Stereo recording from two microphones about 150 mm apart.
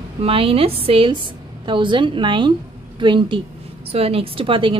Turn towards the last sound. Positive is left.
turn(degrees=-35)  # may be behind; listen again after turning